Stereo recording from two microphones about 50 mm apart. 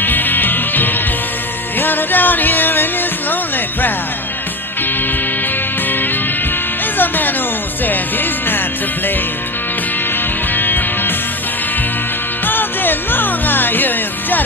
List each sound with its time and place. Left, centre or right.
0.0 s music: left
7.0 s music: left
10.5 s music: left
12.4 s music: left